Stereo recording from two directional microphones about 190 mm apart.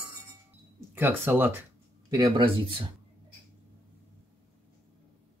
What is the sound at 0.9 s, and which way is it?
Speech, 10° right (ahead or behind).